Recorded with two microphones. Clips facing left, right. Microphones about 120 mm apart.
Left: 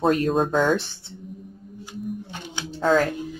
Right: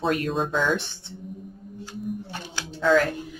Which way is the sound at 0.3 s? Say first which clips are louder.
Left 4 dB; 45° left (ahead or behind).